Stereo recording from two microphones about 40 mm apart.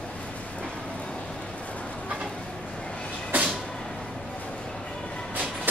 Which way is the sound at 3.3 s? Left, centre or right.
Right.